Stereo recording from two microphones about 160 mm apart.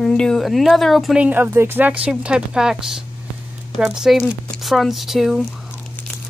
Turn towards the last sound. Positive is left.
turn(degrees=0)  # may be behind; listen again after turning